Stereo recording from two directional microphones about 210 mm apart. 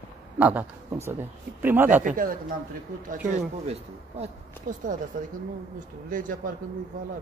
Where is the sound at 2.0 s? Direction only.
40° right (ahead or behind).